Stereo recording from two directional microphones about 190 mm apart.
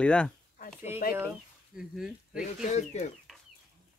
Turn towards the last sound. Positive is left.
turn(degrees=35)  # may be behind; listen again after turning